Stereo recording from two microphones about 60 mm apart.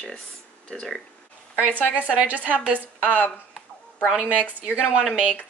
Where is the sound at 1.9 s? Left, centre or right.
Right.